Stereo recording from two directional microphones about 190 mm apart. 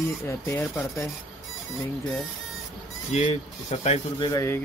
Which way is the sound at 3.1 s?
35° left (ahead or behind).